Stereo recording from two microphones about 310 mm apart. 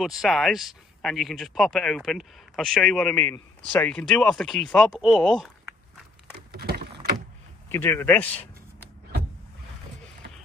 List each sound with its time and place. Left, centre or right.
0.0 s speech: centre
6.5 s vehicle: right
7.7 s a man's voice: centre